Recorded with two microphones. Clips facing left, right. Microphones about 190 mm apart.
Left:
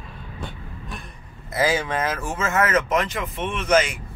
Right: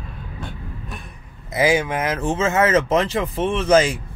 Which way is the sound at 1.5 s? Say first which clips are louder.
Right 3 dB; 15° right (ahead or behind).